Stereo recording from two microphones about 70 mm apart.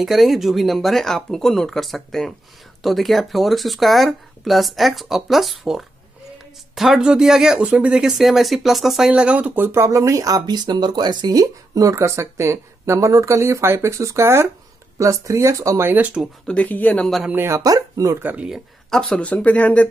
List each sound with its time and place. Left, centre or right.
0.0 s speech: centre
9.6 s speech: right
9.8 s speech: right
15.8 s speech: right
16.4 s speech: left
17.6 s speech: right
18.9 s speech: centre
19.1 s speech: left